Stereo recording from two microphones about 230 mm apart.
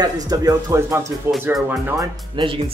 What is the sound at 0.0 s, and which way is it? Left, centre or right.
Speech, centre.